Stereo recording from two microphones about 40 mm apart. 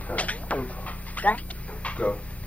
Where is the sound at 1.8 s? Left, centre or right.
Left.